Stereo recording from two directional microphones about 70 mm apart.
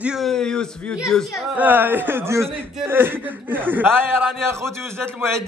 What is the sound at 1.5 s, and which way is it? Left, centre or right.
A man's voice, right.